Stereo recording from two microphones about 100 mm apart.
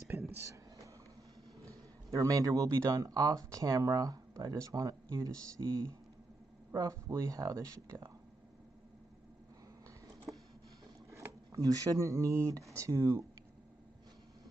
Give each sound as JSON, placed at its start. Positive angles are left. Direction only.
{"t": 0.3, "sound": "a sound", "side_deg": -30}
{"t": 1.6, "sound": "a man's voice", "side_deg": -35}
{"t": 11.5, "sound": "speech", "side_deg": -35}